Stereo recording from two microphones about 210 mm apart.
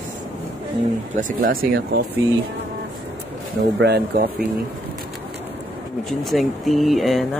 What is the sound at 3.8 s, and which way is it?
Speech, 50° right (ahead or behind).